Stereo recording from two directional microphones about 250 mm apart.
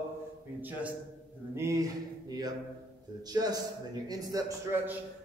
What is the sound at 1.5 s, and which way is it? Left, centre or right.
Speech, centre.